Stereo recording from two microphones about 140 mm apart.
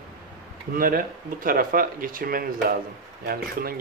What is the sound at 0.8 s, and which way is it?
Speech, 90° right.